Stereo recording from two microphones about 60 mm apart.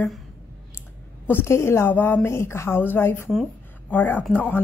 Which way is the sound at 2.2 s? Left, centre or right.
Left.